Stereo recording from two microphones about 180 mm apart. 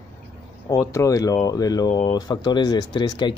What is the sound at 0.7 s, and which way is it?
A man's voice, 20° left (ahead or behind).